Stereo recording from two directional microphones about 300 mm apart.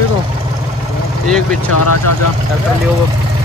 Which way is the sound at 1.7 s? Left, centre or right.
Left.